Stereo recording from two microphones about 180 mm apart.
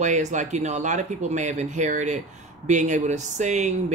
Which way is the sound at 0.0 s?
40° right (ahead or behind).